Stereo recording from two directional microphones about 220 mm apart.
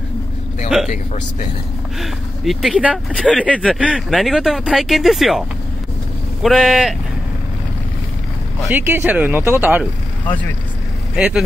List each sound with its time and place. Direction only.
0.8 s speech: 30° left (ahead or behind)
2.0 s speech: centre (ahead or behind)
6.4 s speech: centre (ahead or behind)
8.7 s speech: 10° right (ahead or behind)
11.1 s speech: 5° right (ahead or behind)